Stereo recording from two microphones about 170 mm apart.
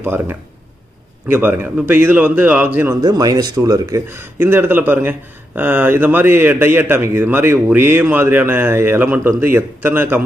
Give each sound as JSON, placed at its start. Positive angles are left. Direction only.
{"t": 0.0, "sound": "speech", "side_deg": -15}
{"t": 3.0, "sound": "speech", "side_deg": -25}